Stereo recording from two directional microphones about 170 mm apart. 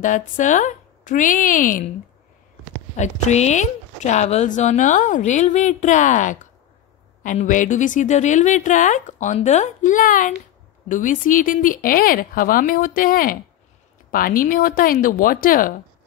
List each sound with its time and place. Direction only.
0.0 s speech: 50° left (ahead or behind)
3.0 s speech: 40° left (ahead or behind)